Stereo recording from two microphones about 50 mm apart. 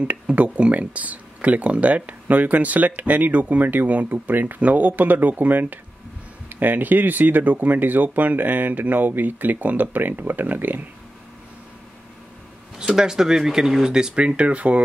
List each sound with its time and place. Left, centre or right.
0.0 s speech: right
12.7 s speech: centre